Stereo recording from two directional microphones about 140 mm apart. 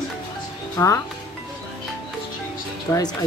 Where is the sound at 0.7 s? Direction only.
20° left (ahead or behind).